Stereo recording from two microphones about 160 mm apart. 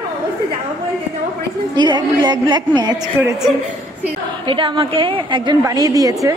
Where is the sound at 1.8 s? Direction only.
30° right (ahead or behind).